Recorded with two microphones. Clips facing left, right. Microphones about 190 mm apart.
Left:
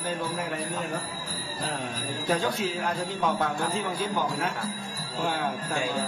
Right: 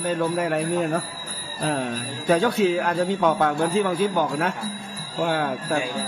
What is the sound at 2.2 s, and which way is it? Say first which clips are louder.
Speech: right 8 dB; 65° right (ahead or behind).